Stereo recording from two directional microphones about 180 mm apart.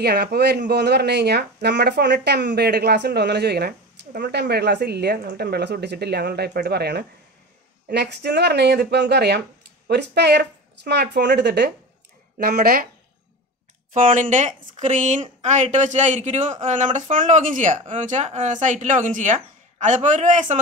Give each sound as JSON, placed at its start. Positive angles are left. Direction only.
{"t": 0.0, "sound": "speech", "side_deg": -65}
{"t": 13.9, "sound": "a man's voice", "side_deg": -45}